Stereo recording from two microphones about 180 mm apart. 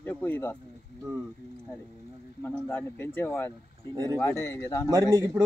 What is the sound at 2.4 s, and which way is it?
Speech, 10° left (ahead or behind).